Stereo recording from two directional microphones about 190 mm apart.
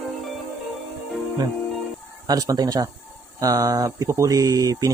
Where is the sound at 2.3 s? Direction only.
20° right (ahead or behind).